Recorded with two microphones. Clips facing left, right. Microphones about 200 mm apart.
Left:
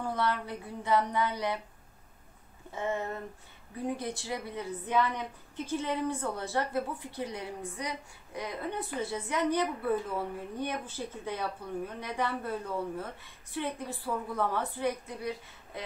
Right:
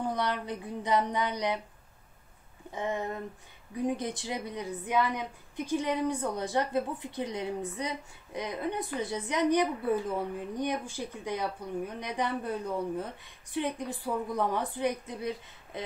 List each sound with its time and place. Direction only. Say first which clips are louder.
0.0 s speech: even; 20° right (ahead or behind)
2.7 s a woman's voice: right 1 dB; 15° right (ahead or behind)